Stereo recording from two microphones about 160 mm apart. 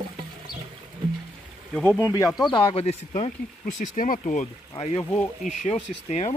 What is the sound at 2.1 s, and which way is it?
Speech, 20° left (ahead or behind).